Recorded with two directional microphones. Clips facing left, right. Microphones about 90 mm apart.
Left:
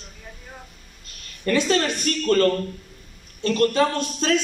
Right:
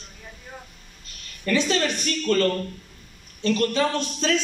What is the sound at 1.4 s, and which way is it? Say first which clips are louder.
Speech: left 2 dB; 45° left (ahead or behind).